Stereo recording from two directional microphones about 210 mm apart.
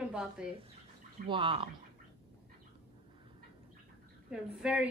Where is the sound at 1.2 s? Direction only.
25° right (ahead or behind).